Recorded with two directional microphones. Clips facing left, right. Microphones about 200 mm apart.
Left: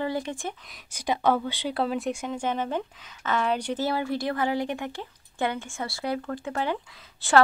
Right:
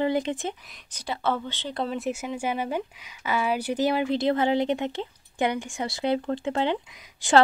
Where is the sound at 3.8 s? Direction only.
15° right (ahead or behind).